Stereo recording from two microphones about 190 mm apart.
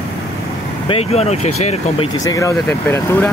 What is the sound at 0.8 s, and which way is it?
Speech, 30° left (ahead or behind).